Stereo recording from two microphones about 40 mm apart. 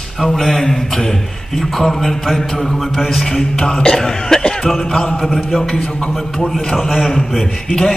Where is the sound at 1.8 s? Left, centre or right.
Centre.